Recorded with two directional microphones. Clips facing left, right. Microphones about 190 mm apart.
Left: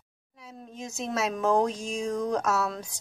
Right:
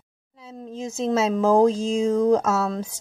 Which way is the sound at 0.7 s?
30° right (ahead or behind).